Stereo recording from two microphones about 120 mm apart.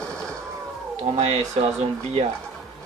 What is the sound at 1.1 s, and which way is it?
Speech, 60° right (ahead or behind).